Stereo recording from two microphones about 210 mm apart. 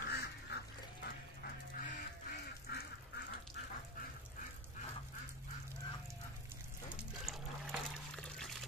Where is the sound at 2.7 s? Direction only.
50° left (ahead or behind).